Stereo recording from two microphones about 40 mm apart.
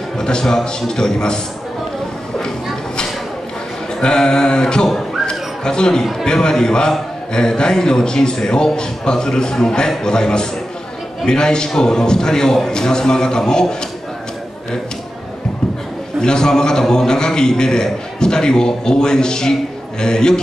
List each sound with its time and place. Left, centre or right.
0.2 s a man's voice: centre
4.0 s a man's voice: centre
5.2 s a sound: centre
6.2 s a man's voice: centre
16.2 s a man's voice: centre